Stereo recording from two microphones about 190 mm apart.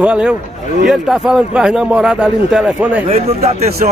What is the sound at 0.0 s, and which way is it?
Speech, 5° right (ahead or behind).